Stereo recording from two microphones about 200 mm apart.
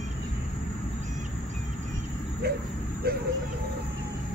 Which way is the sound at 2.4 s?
50° right (ahead or behind).